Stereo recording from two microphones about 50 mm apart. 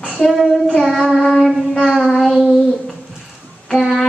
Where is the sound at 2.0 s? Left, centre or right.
Centre.